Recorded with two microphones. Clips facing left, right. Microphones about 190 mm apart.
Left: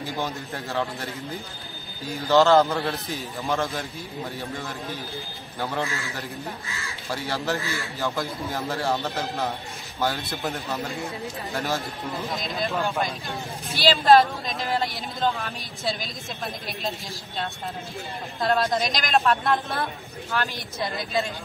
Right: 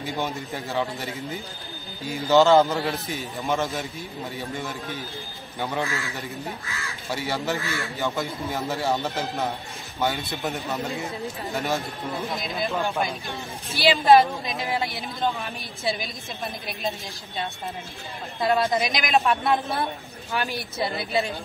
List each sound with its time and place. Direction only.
0.0 s a man's voice: centre (ahead or behind)
13.7 s a man's voice: centre (ahead or behind)
18.4 s a man's voice: 5° right (ahead or behind)